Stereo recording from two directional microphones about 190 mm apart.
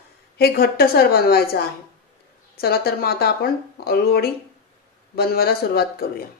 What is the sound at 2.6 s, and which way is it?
A woman's voice, 55° left (ahead or behind).